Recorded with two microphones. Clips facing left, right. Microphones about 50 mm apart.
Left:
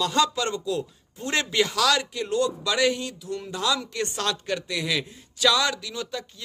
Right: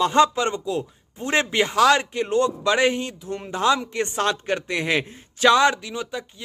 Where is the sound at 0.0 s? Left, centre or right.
Right.